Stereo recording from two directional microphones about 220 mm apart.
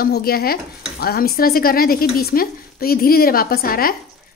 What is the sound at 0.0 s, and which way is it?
Speech, 45° left (ahead or behind).